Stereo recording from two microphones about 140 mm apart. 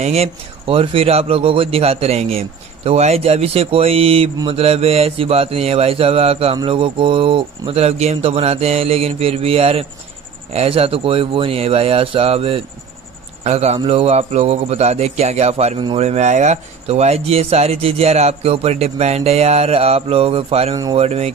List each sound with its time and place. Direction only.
0.0 s mantra: 50° right (ahead or behind)
13.4 s speech: 50° right (ahead or behind)
13.7 s mantra: 45° right (ahead or behind)